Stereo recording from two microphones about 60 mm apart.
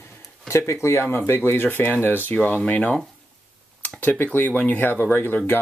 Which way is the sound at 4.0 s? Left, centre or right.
Left.